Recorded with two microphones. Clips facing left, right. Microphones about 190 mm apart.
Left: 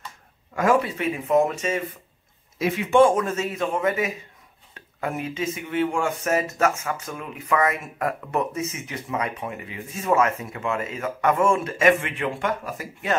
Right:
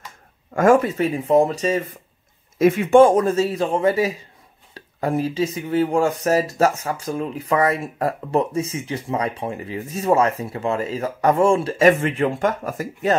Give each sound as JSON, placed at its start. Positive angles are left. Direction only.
{"t": 0.6, "sound": "speech", "side_deg": -45}
{"t": 2.6, "sound": "speech", "side_deg": -45}